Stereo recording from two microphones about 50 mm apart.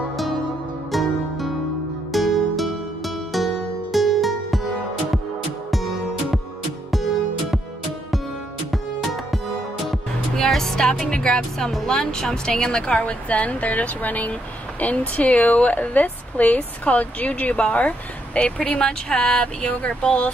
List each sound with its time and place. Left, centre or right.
0.9 s music: centre
2.1 s music: centre
9.8 s music: centre
11.9 s a woman's voice: centre